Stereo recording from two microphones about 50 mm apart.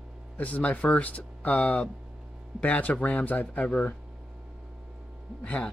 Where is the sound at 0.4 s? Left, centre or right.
Left.